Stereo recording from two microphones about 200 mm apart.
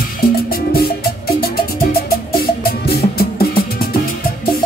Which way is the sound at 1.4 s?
50° left (ahead or behind).